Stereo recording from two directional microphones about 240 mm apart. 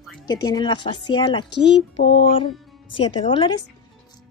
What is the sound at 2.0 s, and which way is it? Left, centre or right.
Music, left.